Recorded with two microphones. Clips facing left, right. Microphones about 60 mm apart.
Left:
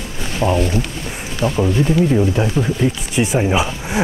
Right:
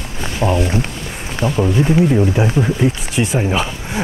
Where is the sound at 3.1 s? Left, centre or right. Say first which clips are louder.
Left 1 dB; centre.